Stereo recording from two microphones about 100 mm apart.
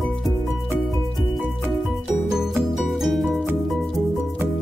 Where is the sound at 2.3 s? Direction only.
5° right (ahead or behind).